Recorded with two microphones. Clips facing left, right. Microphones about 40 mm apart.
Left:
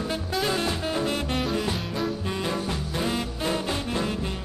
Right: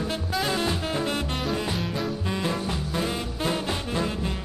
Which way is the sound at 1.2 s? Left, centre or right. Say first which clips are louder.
Left 1 dB; centre.